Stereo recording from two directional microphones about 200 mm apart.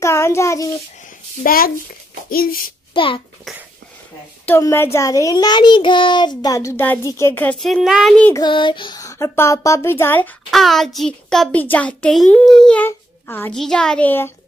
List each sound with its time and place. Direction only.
0.0 s child singing: 15° left (ahead or behind)
1.4 s a child's voice: 45° left (ahead or behind)
2.9 s a sound: 25° left (ahead or behind)
4.5 s speech: 15° left (ahead or behind)
8.4 s speech: 25° left (ahead or behind)